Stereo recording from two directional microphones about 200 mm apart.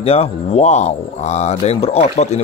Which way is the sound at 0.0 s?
30° left (ahead or behind).